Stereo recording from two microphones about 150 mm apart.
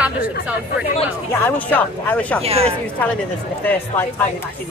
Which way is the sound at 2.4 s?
40° right (ahead or behind).